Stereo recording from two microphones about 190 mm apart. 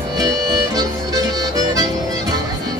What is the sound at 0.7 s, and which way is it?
Music, 20° right (ahead or behind).